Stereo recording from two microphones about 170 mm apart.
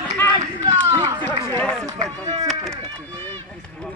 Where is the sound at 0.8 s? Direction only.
20° right (ahead or behind).